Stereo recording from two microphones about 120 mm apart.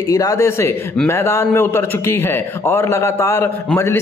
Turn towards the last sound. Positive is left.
turn(degrees=20)  # may be behind; listen again after turning